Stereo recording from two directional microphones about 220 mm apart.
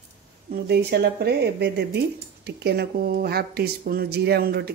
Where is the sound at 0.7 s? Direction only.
50° right (ahead or behind).